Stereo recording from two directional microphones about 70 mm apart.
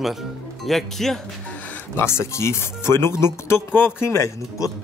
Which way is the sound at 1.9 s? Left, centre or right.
Left.